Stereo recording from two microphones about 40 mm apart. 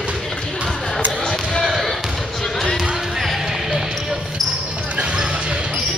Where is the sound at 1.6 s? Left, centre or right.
Centre.